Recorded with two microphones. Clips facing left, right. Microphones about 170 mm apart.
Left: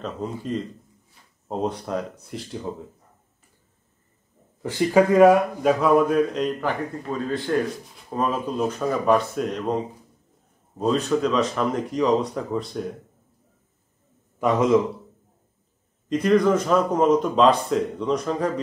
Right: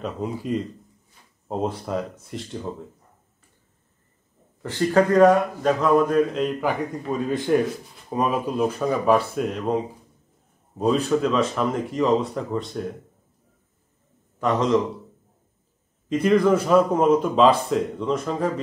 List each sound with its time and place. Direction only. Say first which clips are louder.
0.0 s a man's voice: right 1 dB; 10° right (ahead or behind)
4.6 s a man's voice: left 1 dB; 10° left (ahead or behind); by 7.2 s 5° right (ahead or behind)
7.2 s a man's voice: right 3 dB; 15° right (ahead or behind); by 12.9 s centre (ahead or behind)
14.4 s a man's voice: left 2 dB; 10° left (ahead or behind)
16.1 s a man's voice: even; centre (ahead or behind)